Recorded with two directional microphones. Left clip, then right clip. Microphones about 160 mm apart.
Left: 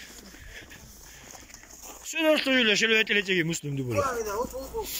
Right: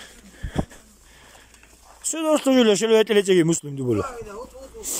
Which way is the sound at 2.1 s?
50° right (ahead or behind).